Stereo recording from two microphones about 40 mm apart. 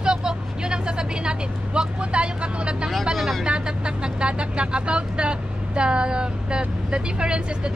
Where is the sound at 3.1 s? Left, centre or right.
Centre.